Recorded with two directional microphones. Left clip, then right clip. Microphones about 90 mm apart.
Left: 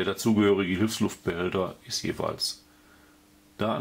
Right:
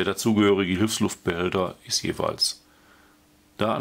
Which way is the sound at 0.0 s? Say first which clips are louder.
Right 3 dB; 25° right (ahead or behind).